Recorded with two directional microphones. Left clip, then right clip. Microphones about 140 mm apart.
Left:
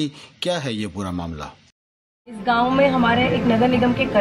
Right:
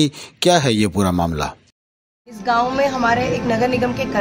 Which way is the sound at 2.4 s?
80° right.